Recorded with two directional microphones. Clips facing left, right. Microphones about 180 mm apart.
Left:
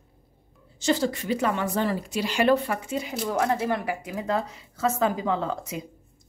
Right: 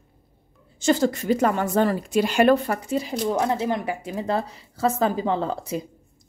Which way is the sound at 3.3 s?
20° right (ahead or behind).